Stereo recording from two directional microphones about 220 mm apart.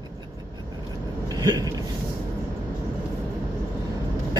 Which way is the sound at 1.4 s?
15° right (ahead or behind).